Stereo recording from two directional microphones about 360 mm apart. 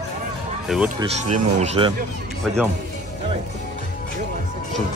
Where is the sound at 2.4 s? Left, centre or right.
Centre.